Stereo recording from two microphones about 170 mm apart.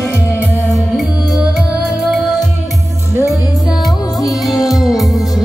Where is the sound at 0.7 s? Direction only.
Centre (ahead or behind).